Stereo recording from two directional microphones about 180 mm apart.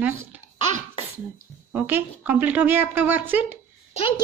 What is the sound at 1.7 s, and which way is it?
A woman's voice, 10° right (ahead or behind).